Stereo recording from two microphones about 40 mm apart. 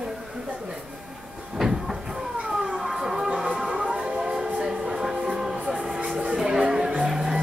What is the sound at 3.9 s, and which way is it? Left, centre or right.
Train, centre.